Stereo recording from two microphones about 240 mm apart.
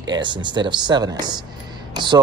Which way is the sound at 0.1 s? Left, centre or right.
Centre.